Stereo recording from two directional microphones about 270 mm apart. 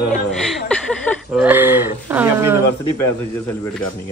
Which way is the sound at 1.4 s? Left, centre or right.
Centre.